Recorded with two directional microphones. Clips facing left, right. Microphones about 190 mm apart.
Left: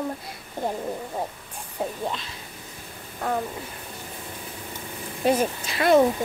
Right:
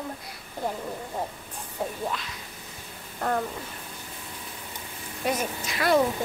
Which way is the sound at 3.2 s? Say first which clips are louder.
Even; centre (ahead or behind).